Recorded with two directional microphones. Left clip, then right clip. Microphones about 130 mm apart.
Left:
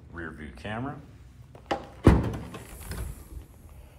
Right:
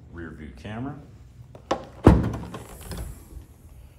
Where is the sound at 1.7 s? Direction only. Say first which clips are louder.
Right 4 dB; 5° right (ahead or behind).